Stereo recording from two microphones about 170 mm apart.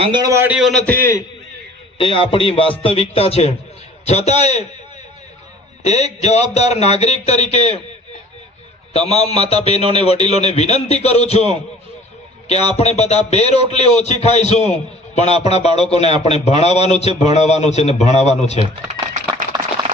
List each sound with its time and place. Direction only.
0.0 s a man's voice: 25° right (ahead or behind)
0.6 s a man's voice: centre (ahead or behind)
2.0 s a man's voice: 30° left (ahead or behind)
5.9 s a man's voice: 40° left (ahead or behind)
8.9 s a man's voice: 40° left (ahead or behind)
18.6 s a sound: 40° right (ahead or behind)